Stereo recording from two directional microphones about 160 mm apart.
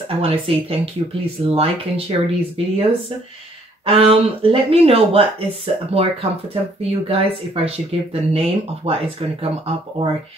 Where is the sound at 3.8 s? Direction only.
35° right (ahead or behind).